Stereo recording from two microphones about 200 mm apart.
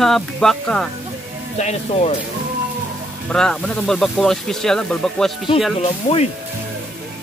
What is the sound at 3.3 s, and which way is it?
Speech, 5° left (ahead or behind).